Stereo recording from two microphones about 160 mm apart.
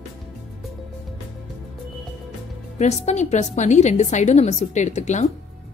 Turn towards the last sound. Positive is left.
turn(degrees=45)  # may be behind; listen again after turning